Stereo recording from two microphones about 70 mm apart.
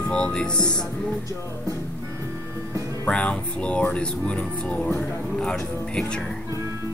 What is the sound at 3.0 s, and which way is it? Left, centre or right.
Speech, centre.